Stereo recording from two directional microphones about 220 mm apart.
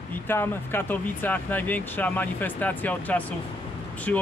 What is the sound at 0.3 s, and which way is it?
Speech, 10° left (ahead or behind).